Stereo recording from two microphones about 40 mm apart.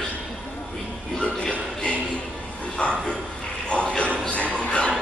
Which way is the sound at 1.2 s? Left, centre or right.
Left.